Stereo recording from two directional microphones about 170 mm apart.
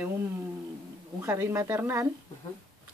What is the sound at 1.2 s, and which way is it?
Speech, 15° right (ahead or behind).